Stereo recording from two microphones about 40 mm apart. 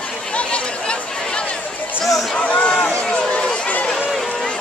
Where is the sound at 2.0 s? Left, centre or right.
Centre.